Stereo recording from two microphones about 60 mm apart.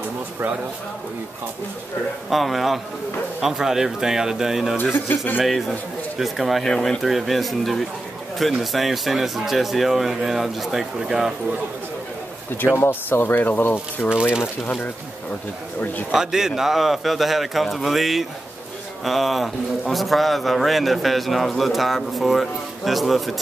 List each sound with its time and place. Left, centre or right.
2.2 s a man's voice: centre
4.9 s speech: left
5.4 s a man's voice: centre
12.7 s speech: left
16.1 s a man's voice: centre